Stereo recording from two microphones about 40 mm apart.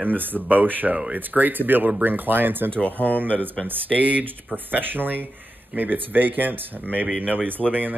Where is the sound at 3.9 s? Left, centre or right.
Right.